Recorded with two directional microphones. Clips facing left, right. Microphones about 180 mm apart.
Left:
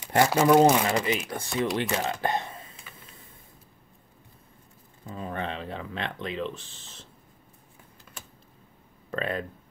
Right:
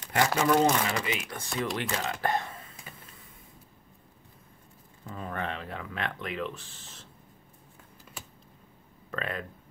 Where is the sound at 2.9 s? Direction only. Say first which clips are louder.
Right 2 dB; 40° right (ahead or behind).